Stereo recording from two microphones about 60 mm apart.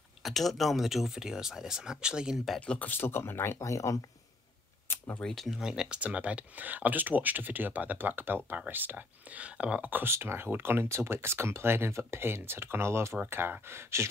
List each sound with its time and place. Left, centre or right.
0.2 s speech: centre
2.3 s speech: centre
2.6 s speech: left
2.9 s speech: left
3.5 s speech: left
4.9 s speech: left
5.2 s speech: centre
5.6 s speech: centre; by 10.1 s right
10.1 s speech: right